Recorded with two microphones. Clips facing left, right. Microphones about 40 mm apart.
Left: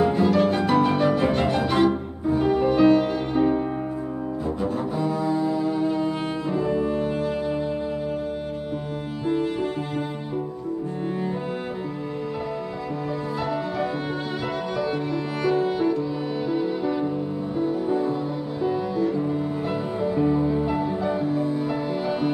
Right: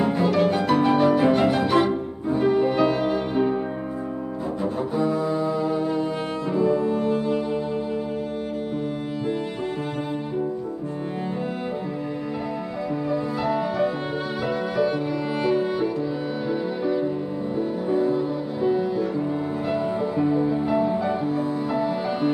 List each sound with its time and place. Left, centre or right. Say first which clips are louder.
0.0 s music: left 1 dB; centre
4.9 s music: right 3 dB; centre
9.2 s music: left 4 dB; centre
13.4 s music: right 3 dB; centre
16.4 s violin: left 2 dB; centre
17.6 s music: right 1 dB; centre
19.7 s music: right 3 dB; centre